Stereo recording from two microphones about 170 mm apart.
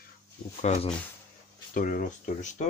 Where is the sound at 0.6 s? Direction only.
40° left (ahead or behind).